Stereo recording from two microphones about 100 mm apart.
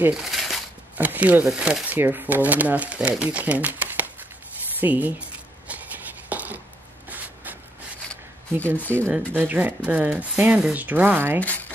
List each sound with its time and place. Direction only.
0.1 s a sound: centre (ahead or behind)
0.9 s speech: 15° right (ahead or behind)
2.0 s speech: 20° right (ahead or behind)
5.7 s a sound: 15° right (ahead or behind)
8.6 s speech: 15° left (ahead or behind)
9.3 s speech: 15° right (ahead or behind)